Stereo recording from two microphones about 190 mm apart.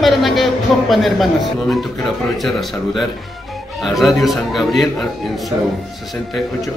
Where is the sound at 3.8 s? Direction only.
Centre (ahead or behind).